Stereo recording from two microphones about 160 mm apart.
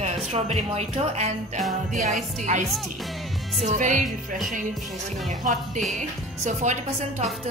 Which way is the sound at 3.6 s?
50° right (ahead or behind).